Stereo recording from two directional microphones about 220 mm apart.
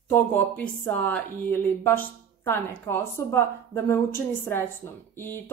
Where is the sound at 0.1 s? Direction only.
10° left (ahead or behind).